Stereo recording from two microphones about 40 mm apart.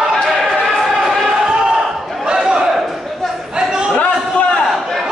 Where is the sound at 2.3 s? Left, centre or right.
Centre.